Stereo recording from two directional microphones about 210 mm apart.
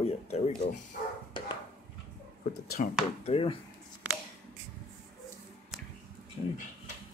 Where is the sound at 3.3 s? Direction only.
25° left (ahead or behind).